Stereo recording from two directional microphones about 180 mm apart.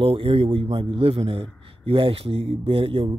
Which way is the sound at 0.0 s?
30° right (ahead or behind).